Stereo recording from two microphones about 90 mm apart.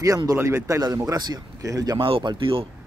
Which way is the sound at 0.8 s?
40° right (ahead or behind).